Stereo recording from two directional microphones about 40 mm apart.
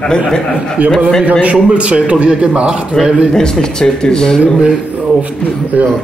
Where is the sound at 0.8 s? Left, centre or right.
Right.